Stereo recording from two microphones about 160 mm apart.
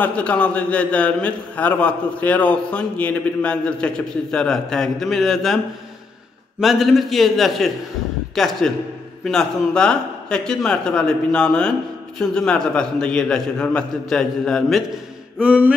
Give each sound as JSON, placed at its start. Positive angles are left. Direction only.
{"t": 0.0, "sound": "a man's voice", "side_deg": 10}
{"t": 6.6, "sound": "a man's voice", "side_deg": 0}
{"t": 15.3, "sound": "music", "side_deg": -10}